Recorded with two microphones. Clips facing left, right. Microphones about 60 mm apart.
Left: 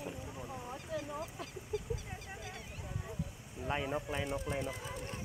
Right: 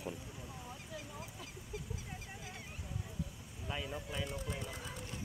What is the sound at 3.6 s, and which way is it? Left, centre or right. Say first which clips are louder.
Speech: left 6 dB; left.